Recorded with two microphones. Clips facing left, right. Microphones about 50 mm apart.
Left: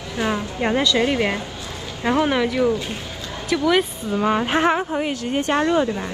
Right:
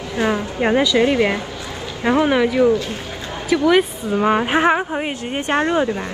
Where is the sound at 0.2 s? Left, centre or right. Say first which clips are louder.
Right 3 dB; centre.